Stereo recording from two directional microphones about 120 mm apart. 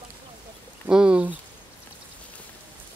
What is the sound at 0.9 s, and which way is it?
Speech, 5° right (ahead or behind).